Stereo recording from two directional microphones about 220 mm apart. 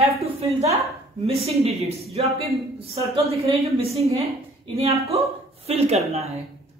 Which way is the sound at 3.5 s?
Centre (ahead or behind).